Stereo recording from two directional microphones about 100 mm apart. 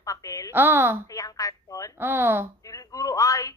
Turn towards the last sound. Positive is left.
turn(degrees=35)  # may be behind; listen again after turning